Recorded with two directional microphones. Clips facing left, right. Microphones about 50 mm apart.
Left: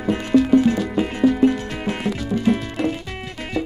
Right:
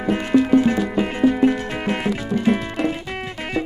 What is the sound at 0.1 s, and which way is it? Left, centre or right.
Music, right.